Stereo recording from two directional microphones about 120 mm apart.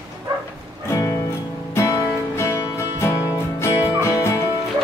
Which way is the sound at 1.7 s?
25° left (ahead or behind).